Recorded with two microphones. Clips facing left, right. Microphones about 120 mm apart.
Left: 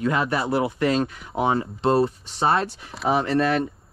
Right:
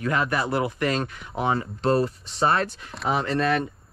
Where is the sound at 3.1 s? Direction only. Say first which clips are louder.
Left 3 dB; 30° left (ahead or behind).